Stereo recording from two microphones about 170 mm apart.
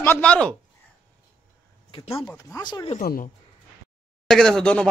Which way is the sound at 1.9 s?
35° left (ahead or behind).